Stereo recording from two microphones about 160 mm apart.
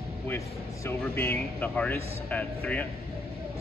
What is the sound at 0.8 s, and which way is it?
Speech, 15° left (ahead or behind).